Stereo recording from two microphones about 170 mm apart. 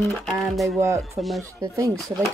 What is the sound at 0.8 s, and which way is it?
Speech, 15° right (ahead or behind).